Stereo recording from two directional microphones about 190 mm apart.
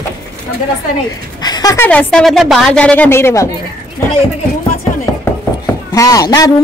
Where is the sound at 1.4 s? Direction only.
20° left (ahead or behind).